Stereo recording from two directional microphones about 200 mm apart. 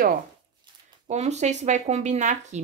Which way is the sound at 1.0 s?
35° right (ahead or behind).